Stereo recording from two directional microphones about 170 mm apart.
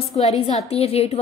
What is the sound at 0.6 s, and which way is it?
Speech, 35° left (ahead or behind).